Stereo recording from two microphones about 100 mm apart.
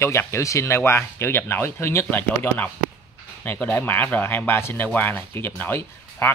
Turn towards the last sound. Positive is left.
turn(degrees=20)  # may be behind; listen again after turning